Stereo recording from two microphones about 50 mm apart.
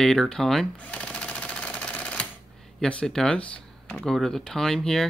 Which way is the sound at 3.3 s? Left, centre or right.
Left.